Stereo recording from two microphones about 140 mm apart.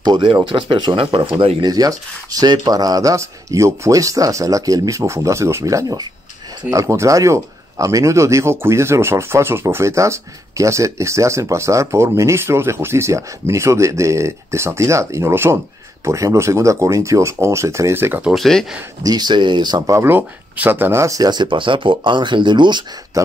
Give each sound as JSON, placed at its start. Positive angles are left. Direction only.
{"t": 0.0, "sound": "speech", "side_deg": -35}
{"t": 18.3, "sound": "speech", "side_deg": 0}
{"t": 19.0, "sound": "speech", "side_deg": -30}